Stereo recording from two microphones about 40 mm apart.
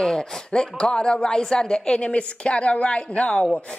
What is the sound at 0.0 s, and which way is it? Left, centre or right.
A woman's voice, centre.